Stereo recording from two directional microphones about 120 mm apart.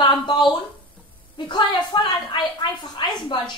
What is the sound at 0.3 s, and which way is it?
A woman's voice, 40° left (ahead or behind).